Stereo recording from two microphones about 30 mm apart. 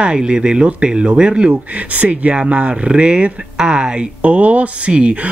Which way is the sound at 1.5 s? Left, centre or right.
Right.